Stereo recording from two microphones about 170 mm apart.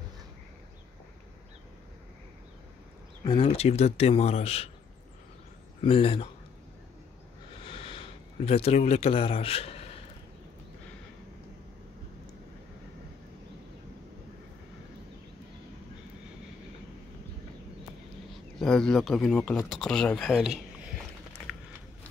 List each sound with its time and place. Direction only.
3.3 s speech: 35° left (ahead or behind)
5.8 s speech: 30° left (ahead or behind)
7.6 s sniff: 30° left (ahead or behind)
8.5 s speech: 35° left (ahead or behind)
18.6 s speech: 5° left (ahead or behind)